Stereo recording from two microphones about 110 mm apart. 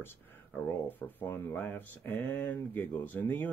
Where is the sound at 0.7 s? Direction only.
15° left (ahead or behind).